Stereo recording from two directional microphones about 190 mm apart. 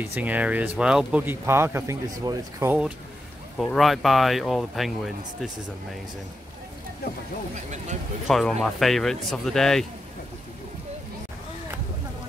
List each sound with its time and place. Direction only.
0.0 s speech: 10° right (ahead or behind)
3.5 s speech: centre (ahead or behind)
7.5 s speech: 40° right (ahead or behind)
8.3 s speech: centre (ahead or behind)